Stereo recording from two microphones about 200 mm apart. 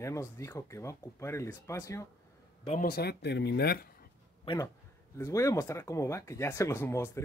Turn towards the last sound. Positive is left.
turn(degrees=10)  # may be behind; listen again after turning